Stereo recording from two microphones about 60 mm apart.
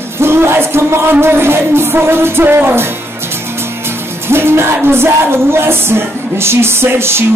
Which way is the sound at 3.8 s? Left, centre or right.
Right.